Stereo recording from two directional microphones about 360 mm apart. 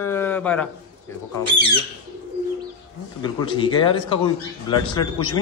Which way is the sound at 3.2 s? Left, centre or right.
Centre.